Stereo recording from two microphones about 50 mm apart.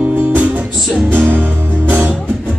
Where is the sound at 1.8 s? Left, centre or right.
Right.